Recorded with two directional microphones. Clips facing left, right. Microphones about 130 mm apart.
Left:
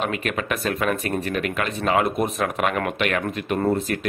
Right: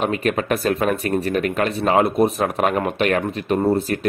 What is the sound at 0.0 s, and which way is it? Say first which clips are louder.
Speech: right 5 dB; 40° right (ahead or behind).